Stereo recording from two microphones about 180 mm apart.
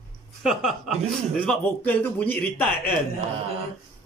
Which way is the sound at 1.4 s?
10° left (ahead or behind).